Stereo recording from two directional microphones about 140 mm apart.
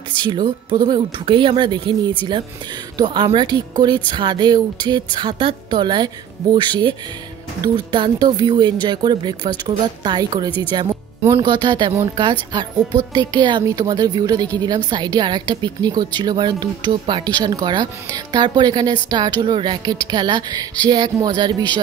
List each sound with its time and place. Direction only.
0.2 s music: 30° right (ahead or behind)
13.1 s speech: 30° right (ahead or behind)
14.9 s music: 30° right (ahead or behind)